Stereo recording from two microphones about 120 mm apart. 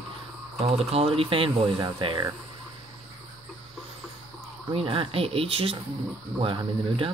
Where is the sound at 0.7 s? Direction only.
55° right (ahead or behind); by 2.3 s 40° right (ahead or behind).